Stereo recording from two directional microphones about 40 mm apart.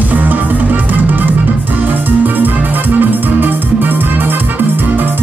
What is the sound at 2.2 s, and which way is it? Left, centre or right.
Music, right.